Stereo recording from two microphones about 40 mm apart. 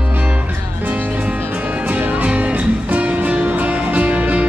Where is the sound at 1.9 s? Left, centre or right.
Right.